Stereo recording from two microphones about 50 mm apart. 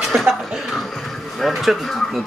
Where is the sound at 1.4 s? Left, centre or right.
Centre.